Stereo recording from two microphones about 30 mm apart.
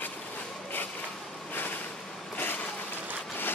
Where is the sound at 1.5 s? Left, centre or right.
Left.